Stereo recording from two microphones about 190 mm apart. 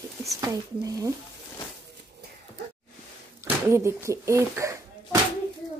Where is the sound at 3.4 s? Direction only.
15° right (ahead or behind).